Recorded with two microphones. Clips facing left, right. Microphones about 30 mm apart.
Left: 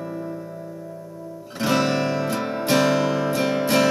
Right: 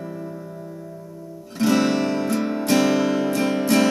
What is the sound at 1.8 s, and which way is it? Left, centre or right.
Music, centre.